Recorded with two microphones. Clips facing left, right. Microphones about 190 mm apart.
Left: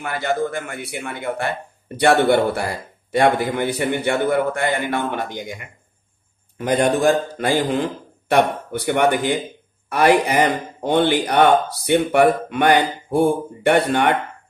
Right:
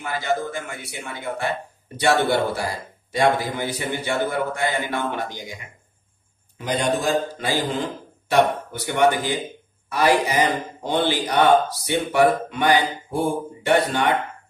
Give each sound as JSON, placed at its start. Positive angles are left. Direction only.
{"t": 0.0, "sound": "a man's voice", "side_deg": 60}
{"t": 6.6, "sound": "a man's voice", "side_deg": 55}